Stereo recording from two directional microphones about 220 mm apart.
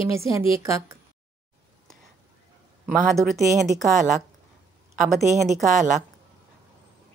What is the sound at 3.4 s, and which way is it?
Speech, 15° right (ahead or behind).